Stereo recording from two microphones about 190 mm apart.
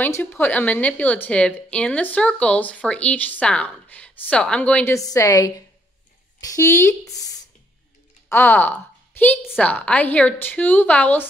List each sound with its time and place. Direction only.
0.0 s a woman's voice: 10° left (ahead or behind)